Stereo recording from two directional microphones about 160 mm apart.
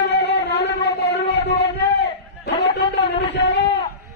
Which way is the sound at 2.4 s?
90° left.